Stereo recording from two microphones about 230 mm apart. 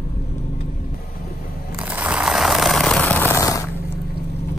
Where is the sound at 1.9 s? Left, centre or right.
Centre.